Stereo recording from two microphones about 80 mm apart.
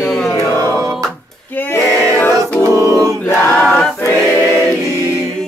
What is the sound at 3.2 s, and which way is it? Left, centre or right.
Choir, left.